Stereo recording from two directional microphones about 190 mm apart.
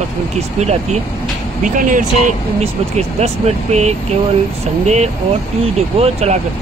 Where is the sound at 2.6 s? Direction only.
35° right (ahead or behind).